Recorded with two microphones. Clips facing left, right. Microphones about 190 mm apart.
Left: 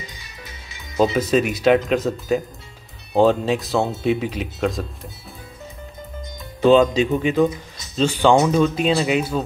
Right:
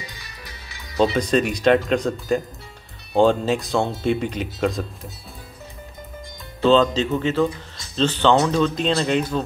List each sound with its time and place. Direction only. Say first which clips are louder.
0.1 s music: left 1 dB; 20° left (ahead or behind)
0.9 s speech: left 1 dB; 5° left (ahead or behind)
6.6 s speech: left 2 dB; 15° left (ahead or behind)